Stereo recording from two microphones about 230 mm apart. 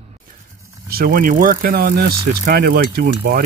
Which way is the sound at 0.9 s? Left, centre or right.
Right.